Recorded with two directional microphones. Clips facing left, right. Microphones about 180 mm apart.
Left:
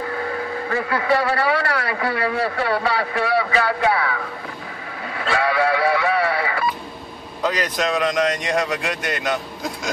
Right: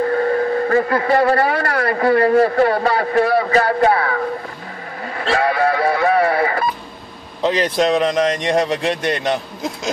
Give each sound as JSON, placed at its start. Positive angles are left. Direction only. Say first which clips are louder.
{"t": 0.0, "sound": "speech", "louder": "right 9 dB", "side_deg": -45}
{"t": 5.2, "sound": "radio", "louder": "right 3 dB", "side_deg": -40}
{"t": 7.4, "sound": "a man's voice", "louder": "right 6 dB", "side_deg": -30}